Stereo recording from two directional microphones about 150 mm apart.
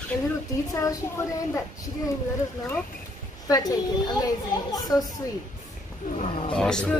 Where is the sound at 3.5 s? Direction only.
25° left (ahead or behind).